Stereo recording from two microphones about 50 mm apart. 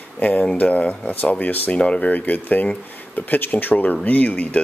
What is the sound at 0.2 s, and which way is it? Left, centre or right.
Speech, left.